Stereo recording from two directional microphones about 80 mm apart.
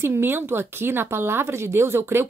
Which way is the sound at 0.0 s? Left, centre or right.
Right.